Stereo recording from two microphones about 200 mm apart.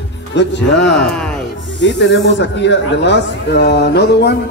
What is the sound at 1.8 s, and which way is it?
A man's voice, 65° left (ahead or behind).